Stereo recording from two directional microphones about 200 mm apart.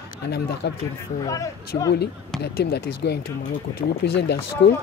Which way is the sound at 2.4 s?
55° left (ahead or behind).